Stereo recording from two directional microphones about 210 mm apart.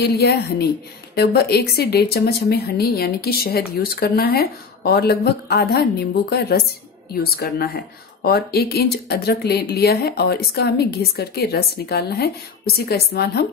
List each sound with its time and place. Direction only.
0.0 s speech: 50° left (ahead or behind)